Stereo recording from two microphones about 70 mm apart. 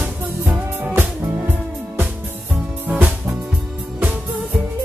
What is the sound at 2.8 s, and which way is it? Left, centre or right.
Music, right.